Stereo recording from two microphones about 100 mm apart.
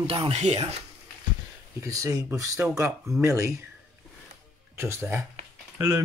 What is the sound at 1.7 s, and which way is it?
Speech, 35° right (ahead or behind).